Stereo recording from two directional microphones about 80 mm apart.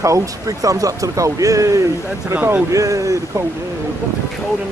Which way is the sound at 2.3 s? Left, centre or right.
Right.